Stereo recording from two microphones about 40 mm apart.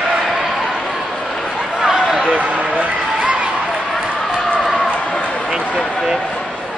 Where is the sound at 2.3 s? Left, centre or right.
Right.